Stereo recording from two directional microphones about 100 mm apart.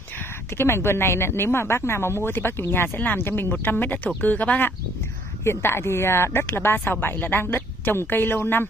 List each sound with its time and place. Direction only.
0.6 s speech: 25° left (ahead or behind)